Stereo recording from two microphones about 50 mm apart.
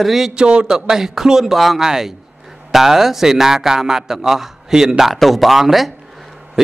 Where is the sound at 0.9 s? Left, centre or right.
Centre.